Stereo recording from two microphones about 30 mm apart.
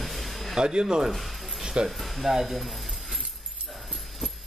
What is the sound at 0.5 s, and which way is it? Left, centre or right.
Speech, right.